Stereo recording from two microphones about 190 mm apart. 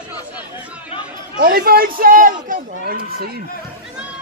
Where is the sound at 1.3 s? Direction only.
50° right (ahead or behind).